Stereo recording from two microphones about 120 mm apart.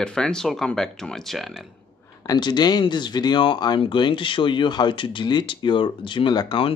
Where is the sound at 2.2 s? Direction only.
35° left (ahead or behind).